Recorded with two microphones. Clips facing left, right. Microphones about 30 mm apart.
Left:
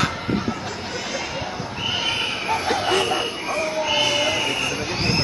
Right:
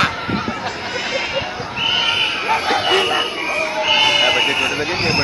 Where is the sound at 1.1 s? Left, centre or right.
Right.